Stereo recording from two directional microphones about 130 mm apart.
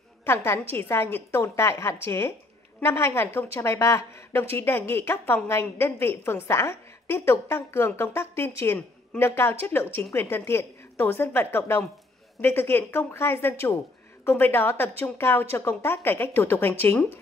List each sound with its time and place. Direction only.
0.2 s a woman's voice: 20° left (ahead or behind)